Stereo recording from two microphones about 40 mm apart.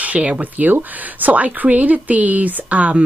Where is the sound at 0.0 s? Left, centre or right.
Right.